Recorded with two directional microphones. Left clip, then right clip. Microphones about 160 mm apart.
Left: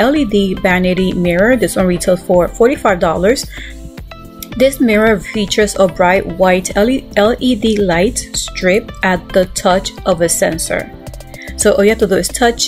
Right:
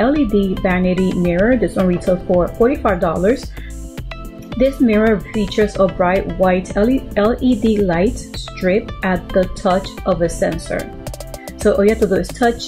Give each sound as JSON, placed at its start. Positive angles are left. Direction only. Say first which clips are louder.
{"t": 0.0, "sound": "speech", "louder": "left 3 dB", "side_deg": 10}
{"t": 0.9, "sound": "speech", "louder": "left 3 dB", "side_deg": 0}
{"t": 1.4, "sound": "speech", "louder": "left 4 dB", "side_deg": 15}
{"t": 4.6, "sound": "speech", "louder": "left 4 dB", "side_deg": 10}
{"t": 6.1, "sound": "speech", "louder": "left 4 dB", "side_deg": 0}
{"t": 6.4, "sound": "speech", "louder": "left 4 dB", "side_deg": 15}